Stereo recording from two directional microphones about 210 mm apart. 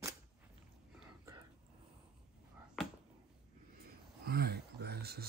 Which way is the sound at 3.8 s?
45° right (ahead or behind).